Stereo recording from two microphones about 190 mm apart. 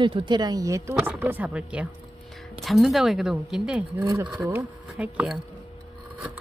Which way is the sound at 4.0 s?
20° right (ahead or behind).